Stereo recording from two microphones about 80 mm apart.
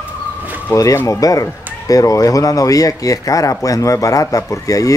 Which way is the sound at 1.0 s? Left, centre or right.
Left.